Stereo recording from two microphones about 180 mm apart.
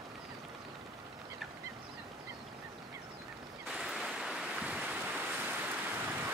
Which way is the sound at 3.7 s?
5° right (ahead or behind).